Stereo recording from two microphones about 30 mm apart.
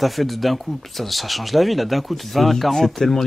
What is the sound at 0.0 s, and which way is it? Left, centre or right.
Speech, centre.